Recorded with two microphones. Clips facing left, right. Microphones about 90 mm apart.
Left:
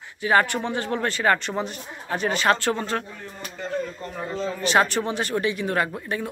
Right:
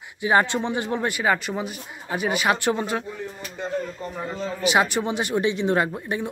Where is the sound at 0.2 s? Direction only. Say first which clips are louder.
Even; 20° right (ahead or behind).